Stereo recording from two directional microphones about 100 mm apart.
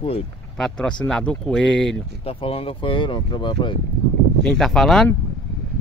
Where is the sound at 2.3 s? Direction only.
70° left (ahead or behind); by 3.7 s 50° left (ahead or behind).